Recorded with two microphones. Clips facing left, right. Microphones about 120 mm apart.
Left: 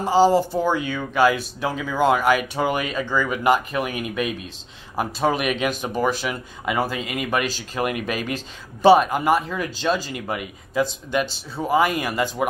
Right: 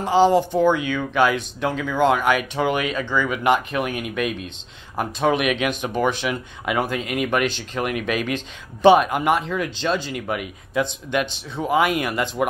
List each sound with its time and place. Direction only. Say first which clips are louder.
0.0 s speech: even; 5° left (ahead or behind)